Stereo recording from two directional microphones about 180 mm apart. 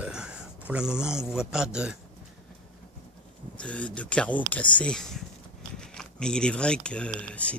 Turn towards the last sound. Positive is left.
turn(degrees=5)  # may be behind; listen again after turning